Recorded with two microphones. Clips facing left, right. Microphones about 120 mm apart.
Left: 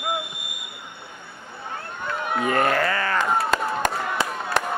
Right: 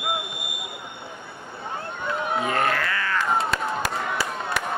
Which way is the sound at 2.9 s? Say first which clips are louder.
Left 3 dB; 45° left (ahead or behind).